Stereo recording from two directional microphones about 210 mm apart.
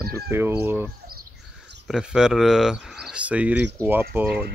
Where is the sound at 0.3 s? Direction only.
10° right (ahead or behind).